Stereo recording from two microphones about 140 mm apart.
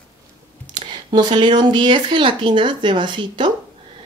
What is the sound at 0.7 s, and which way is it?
Speech, 35° right (ahead or behind).